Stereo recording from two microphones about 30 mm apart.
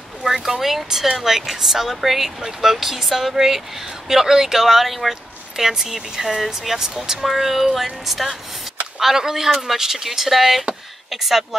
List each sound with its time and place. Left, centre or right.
0.5 s speech: centre
5.6 s speech: centre
6.8 s speech: centre
7.2 s child singing: centre
9.0 s speech: centre